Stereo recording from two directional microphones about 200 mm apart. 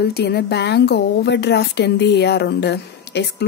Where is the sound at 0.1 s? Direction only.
55° left (ahead or behind).